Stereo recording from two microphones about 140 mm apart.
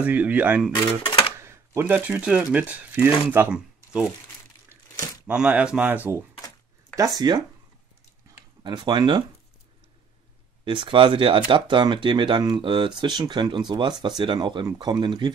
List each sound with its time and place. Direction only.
0.0 s speech: 10° right (ahead or behind)
0.7 s speech: 35° left (ahead or behind)
1.4 s speech: 20° right (ahead or behind)
5.2 s speech: 10° right (ahead or behind)
7.0 s speech: 30° right (ahead or behind)
8.6 s speech: 30° right (ahead or behind)
10.6 s speech: 35° right (ahead or behind)